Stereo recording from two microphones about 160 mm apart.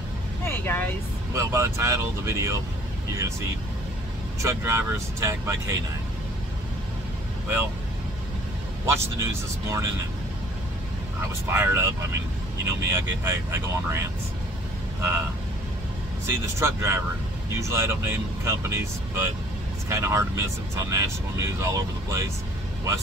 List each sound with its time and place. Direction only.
0.5 s vehicle: 15° left (ahead or behind)
1.3 s speech: 20° right (ahead or behind)
8.8 s speech: 15° right (ahead or behind)
11.4 s speech: 15° right (ahead or behind)
12.9 s speech: 15° right (ahead or behind)
16.3 s speech: 15° right (ahead or behind)